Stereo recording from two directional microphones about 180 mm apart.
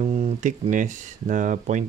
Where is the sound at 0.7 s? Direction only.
45° right (ahead or behind).